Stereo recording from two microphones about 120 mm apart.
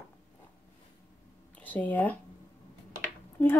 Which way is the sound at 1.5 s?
15° left (ahead or behind).